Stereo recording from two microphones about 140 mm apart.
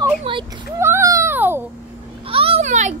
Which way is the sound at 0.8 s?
20° right (ahead or behind).